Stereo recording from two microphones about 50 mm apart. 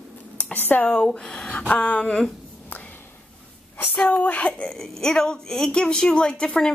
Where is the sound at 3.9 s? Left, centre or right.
Left.